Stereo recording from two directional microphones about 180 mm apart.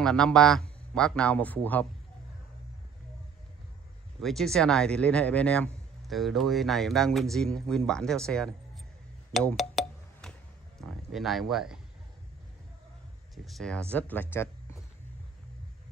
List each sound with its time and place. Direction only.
0.0 s a man's voice: 5° left (ahead or behind)
4.2 s a man's voice: centre (ahead or behind)
9.3 s a sound: 5° left (ahead or behind)
10.8 s speech: centre (ahead or behind)
13.3 s speech: centre (ahead or behind)